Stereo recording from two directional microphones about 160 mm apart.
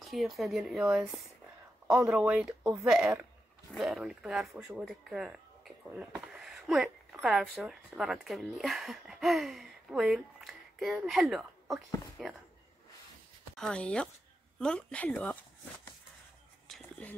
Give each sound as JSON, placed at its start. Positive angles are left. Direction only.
{"t": 0.0, "sound": "speech", "side_deg": 0}
{"t": 13.6, "sound": "speech", "side_deg": 5}
{"t": 16.6, "sound": "a sound", "side_deg": 0}